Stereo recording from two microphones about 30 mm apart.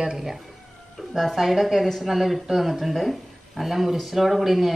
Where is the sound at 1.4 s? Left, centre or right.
Centre.